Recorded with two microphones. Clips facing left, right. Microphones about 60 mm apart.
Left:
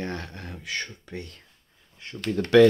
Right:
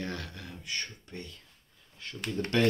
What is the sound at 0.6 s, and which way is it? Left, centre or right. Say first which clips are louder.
Speech: left 5 dB; left.